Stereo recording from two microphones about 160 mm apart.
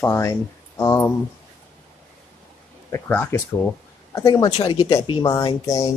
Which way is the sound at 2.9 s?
15° left (ahead or behind).